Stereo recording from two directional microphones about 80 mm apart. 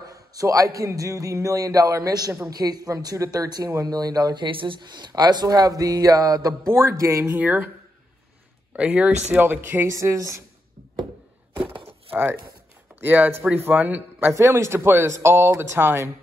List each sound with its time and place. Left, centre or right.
0.0 s speech: right
7.3 s speech: right
8.7 s speech: centre
9.9 s speech: right
12.1 s speech: right
14.3 s speech: right